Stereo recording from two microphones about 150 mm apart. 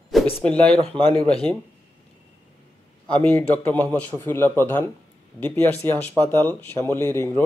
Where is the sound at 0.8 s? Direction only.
35° right (ahead or behind).